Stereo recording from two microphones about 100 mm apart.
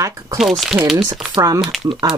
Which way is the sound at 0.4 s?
Centre (ahead or behind).